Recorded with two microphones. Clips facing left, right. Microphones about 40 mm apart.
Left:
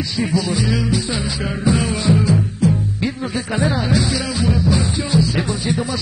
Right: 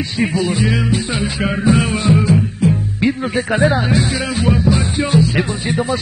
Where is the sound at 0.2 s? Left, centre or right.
Right.